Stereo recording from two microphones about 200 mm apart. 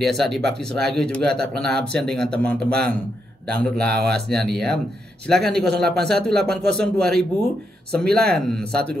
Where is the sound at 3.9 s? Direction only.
Centre (ahead or behind).